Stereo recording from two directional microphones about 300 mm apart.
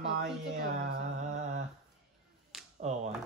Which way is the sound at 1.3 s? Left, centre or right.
Right.